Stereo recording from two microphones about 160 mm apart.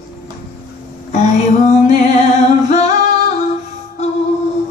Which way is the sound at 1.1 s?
45° left (ahead or behind).